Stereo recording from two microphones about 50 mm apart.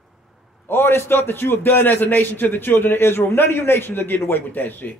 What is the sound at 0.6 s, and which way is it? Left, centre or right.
A man's voice, left.